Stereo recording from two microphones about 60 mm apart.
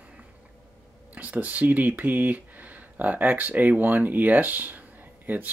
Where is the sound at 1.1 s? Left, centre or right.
Right.